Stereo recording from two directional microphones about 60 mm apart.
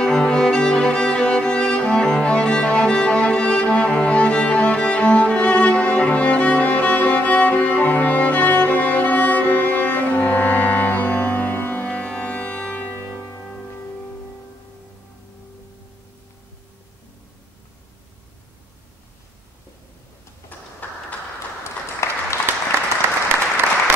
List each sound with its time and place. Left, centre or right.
0.0 s music: centre; by 11.9 s left
11.9 s music: centre
20.8 s a sound: left
22.0 s applause: left
23.0 s applause: right